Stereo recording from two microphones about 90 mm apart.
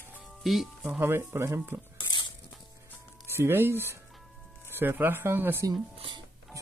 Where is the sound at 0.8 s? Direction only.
25° right (ahead or behind).